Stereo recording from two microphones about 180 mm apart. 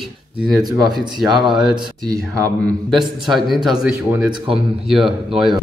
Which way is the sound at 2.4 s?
Centre (ahead or behind).